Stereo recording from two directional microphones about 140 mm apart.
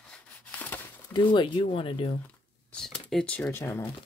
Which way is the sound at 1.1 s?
35° left (ahead or behind).